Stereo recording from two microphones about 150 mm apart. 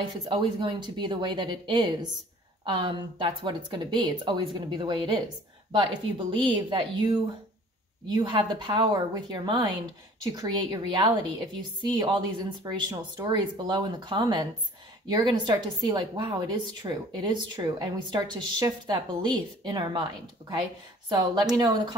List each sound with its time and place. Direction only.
0.2 s a woman's voice: 30° right (ahead or behind)